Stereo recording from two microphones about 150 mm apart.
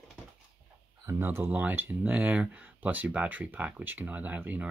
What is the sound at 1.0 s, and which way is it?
Speech, 15° right (ahead or behind).